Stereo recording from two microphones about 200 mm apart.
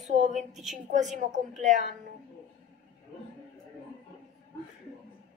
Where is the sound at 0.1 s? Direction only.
35° right (ahead or behind).